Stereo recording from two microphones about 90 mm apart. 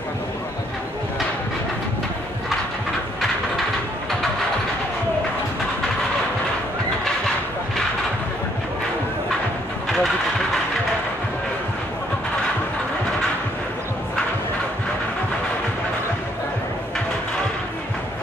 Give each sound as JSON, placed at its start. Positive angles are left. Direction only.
{"t": 9.8, "sound": "vehicle", "side_deg": 5}